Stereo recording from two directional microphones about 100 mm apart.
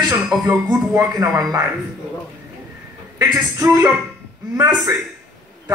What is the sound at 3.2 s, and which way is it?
Speech, 35° right (ahead or behind).